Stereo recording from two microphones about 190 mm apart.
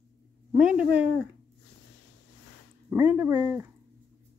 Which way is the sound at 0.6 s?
5° right (ahead or behind).